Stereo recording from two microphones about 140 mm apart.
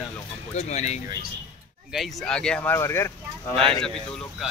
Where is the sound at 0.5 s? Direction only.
55° left (ahead or behind).